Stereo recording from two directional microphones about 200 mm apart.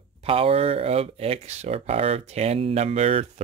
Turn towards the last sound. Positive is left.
turn(degrees=-30)  # may be behind; listen again after turning